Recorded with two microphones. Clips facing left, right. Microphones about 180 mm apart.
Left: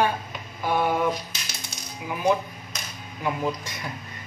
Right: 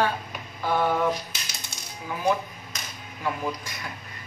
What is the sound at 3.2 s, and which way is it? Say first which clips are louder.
Speech: left 2 dB; 20° left (ahead or behind).